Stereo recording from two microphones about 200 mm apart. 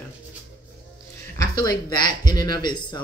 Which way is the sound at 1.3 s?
20° left (ahead or behind).